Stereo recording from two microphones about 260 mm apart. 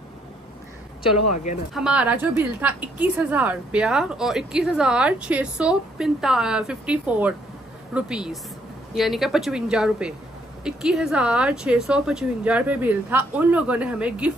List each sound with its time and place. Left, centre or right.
1.1 s speech: left
1.7 s a woman's voice: centre